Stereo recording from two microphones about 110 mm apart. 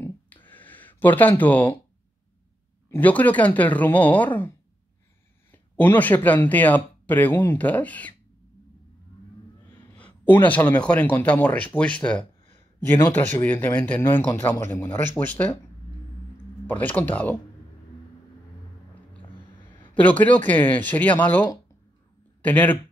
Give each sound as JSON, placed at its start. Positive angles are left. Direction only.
{"t": 0.5, "sound": "a sound", "side_deg": 15}
{"t": 2.9, "sound": "speech", "side_deg": 15}
{"t": 5.5, "sound": "speech", "side_deg": 15}
{"t": 9.9, "sound": "speech", "side_deg": 15}
{"t": 16.6, "sound": "speech", "side_deg": 15}
{"t": 19.9, "sound": "speech", "side_deg": 15}